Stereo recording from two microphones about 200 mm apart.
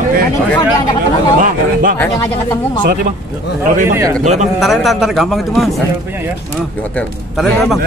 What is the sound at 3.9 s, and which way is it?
Speech, 15° right (ahead or behind).